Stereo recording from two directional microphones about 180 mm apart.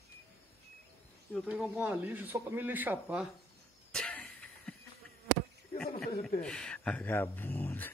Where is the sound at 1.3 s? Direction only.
Centre (ahead or behind).